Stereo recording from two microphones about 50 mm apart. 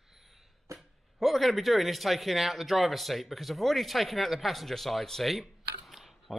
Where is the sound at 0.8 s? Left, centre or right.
Centre.